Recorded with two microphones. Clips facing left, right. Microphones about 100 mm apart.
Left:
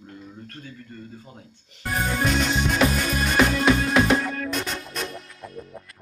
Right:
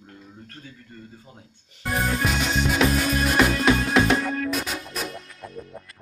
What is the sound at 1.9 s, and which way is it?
Music, centre (ahead or behind).